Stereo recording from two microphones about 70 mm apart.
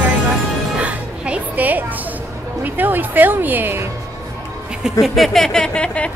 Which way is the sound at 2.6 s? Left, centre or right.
Right.